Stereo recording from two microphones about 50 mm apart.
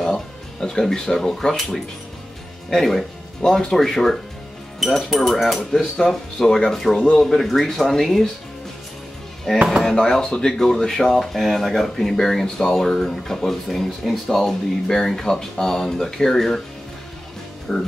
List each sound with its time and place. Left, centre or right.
0.0 s speech: centre
3.4 s speech: centre
9.5 s speech: centre
17.7 s speech: centre